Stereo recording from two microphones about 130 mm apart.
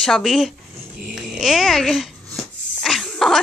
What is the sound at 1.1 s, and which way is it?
Dog, centre (ahead or behind).